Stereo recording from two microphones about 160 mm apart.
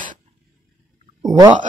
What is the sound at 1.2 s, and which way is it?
Speech, 25° right (ahead or behind).